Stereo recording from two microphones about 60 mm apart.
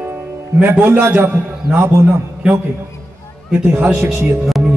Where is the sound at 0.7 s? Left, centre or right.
Right.